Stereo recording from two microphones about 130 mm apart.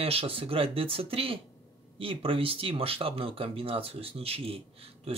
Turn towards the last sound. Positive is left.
turn(degrees=-45)  # may be behind; listen again after turning